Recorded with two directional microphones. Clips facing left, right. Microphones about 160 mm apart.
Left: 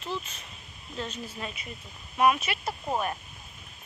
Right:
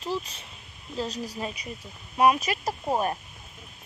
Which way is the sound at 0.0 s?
35° right (ahead or behind).